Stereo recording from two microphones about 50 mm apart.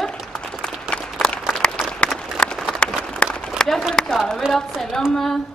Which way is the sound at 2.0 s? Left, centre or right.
Left.